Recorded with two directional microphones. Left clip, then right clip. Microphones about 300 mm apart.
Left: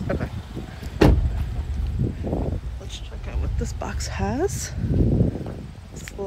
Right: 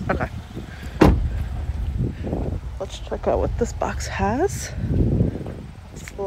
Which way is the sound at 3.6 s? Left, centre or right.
Centre.